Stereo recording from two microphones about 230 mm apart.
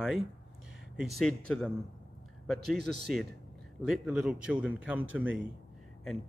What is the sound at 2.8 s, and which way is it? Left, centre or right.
Speech, right.